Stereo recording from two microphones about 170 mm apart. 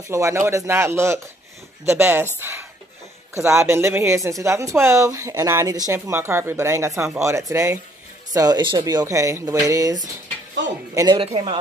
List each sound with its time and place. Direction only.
0.1 s speech: 15° right (ahead or behind); by 11.5 s 30° right (ahead or behind)